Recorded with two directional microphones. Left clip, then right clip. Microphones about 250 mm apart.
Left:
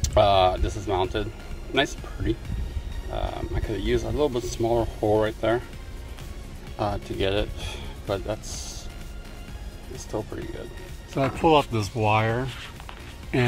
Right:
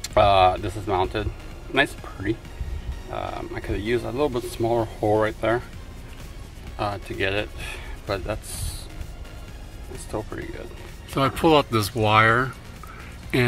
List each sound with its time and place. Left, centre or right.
0.0 s speech: centre
6.8 s a man's voice: left
10.1 s speech: centre